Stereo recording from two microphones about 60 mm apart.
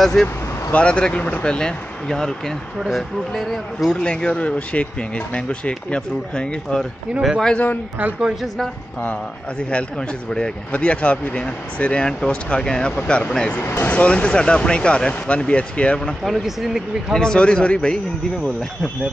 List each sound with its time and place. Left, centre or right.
0.0 s speech: centre
0.7 s speech: centre
4.0 s speech: centre
7.2 s a man's voice: centre
7.5 s speech: left
8.2 s speech: centre
9.7 s speech: centre
13.6 s speech: left
13.9 s speech: left
16.3 s speech: centre
17.1 s speech: centre